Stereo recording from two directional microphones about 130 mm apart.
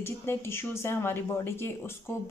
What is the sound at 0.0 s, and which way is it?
Speech, 20° left (ahead or behind).